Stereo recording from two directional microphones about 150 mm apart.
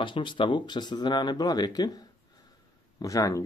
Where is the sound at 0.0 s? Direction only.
30° left (ahead or behind).